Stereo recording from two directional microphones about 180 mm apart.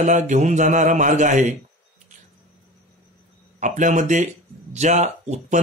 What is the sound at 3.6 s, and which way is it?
Speech, 45° right (ahead or behind).